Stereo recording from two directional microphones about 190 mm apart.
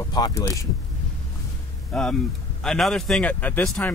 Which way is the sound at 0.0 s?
20° left (ahead or behind).